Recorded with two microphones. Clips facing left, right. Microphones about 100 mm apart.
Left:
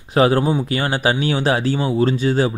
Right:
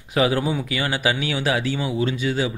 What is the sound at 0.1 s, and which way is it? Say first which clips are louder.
Speech: left 5 dB; 35° left (ahead or behind).